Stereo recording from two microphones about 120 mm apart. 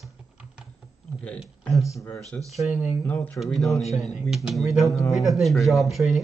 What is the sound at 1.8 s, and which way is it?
Speech, 25° left (ahead or behind).